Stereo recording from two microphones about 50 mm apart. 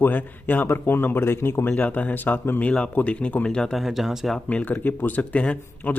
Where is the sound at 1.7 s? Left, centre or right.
Left.